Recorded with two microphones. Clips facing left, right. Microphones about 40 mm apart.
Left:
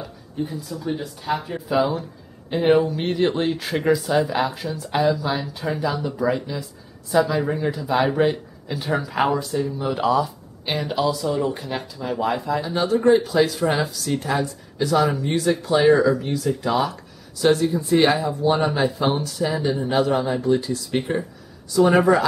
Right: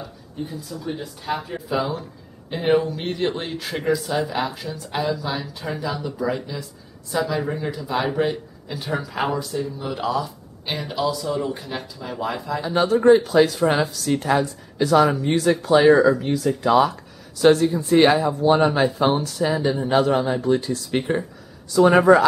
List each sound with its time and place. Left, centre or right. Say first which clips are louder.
0.5 s speech: left 3 dB; centre
12.9 s speech: right 2 dB; centre